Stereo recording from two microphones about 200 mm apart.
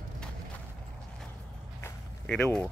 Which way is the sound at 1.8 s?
10° left (ahead or behind).